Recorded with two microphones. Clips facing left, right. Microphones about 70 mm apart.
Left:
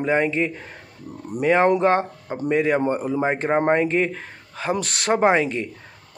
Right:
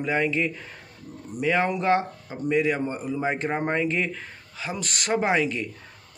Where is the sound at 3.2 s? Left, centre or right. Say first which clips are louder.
Left 6 dB; left.